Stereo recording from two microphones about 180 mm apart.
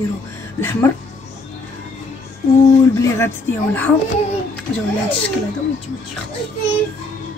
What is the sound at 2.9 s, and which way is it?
Speech, 15° left (ahead or behind).